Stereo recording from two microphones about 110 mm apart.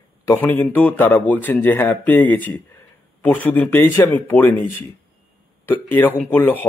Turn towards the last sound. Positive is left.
turn(degrees=15)  # may be behind; listen again after turning